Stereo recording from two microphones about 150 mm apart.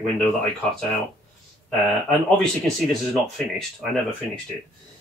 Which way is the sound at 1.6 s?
5° left (ahead or behind).